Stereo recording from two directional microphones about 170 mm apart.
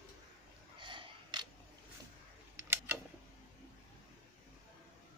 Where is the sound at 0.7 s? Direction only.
30° right (ahead or behind).